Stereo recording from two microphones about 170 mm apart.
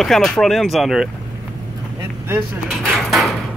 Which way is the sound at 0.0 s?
Centre (ahead or behind).